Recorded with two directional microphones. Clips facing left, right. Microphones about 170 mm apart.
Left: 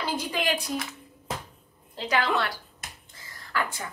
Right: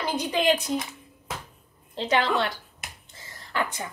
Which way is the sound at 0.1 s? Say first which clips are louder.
Right 6 dB; 20° right (ahead or behind).